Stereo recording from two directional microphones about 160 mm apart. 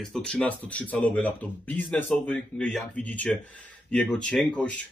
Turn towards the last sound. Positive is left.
turn(degrees=5)  # may be behind; listen again after turning